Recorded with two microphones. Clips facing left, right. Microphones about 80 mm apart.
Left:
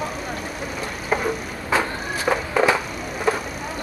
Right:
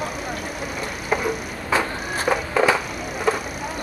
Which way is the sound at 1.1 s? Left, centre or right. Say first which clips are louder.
Even; centre.